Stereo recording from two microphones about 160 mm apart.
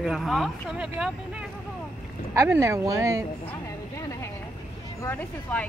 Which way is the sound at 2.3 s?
15° right (ahead or behind).